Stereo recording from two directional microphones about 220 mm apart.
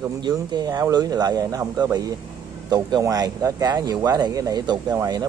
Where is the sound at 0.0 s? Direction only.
20° right (ahead or behind).